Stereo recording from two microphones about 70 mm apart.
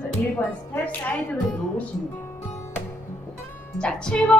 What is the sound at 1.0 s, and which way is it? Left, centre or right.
Speech, left.